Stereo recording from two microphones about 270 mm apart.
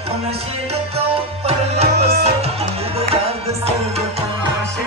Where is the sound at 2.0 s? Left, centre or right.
Right.